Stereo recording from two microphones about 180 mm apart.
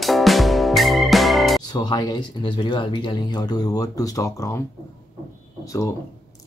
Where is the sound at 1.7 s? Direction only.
25° left (ahead or behind).